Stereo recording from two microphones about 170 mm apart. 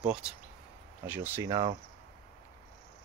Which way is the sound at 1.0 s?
10° right (ahead or behind).